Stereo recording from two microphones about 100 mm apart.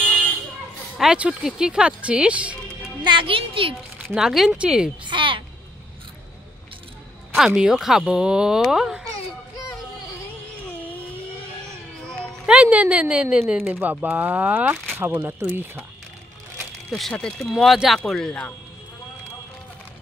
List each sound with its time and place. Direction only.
0.9 s speech: 10° right (ahead or behind)
3.0 s speech: 50° right (ahead or behind)
4.1 s speech: 5° right (ahead or behind)
5.0 s a sound: 55° right (ahead or behind)
7.3 s speech: 5° right (ahead or behind)
12.4 s speech: 15° right (ahead or behind)
16.9 s speech: 5° left (ahead or behind)